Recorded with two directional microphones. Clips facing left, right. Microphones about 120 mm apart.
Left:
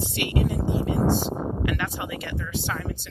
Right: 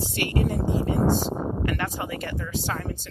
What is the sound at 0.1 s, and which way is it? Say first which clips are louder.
Speech: even; 40° right (ahead or behind).